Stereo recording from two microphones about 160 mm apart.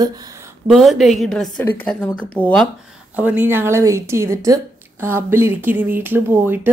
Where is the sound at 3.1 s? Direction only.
10° right (ahead or behind).